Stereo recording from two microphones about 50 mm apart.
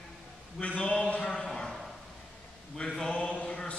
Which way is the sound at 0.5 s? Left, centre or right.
Left.